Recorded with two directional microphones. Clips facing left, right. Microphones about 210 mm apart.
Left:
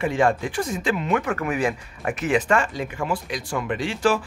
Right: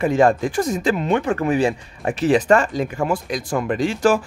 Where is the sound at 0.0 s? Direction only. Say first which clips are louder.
Right 5 dB; 40° right (ahead or behind).